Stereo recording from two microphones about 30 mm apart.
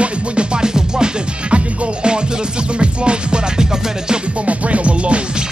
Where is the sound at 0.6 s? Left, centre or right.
Right.